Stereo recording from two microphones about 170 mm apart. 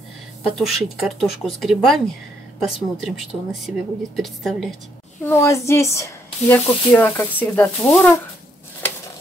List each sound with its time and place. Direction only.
0.6 s speech: centre (ahead or behind)
5.2 s speech: 15° left (ahead or behind)